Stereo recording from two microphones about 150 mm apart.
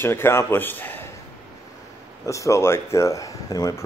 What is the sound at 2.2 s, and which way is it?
Speech, 20° left (ahead or behind).